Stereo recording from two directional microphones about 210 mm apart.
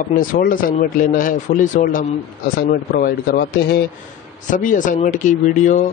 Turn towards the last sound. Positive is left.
turn(degrees=35)  # may be behind; listen again after turning